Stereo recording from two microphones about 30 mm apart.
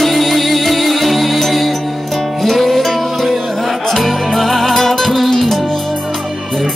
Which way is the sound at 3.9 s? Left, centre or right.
Centre.